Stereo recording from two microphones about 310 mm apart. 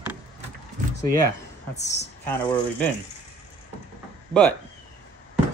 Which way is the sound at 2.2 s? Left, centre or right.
Centre.